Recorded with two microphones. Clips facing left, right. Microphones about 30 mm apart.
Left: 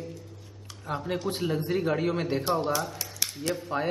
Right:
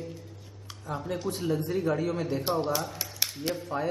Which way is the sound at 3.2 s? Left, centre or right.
Centre.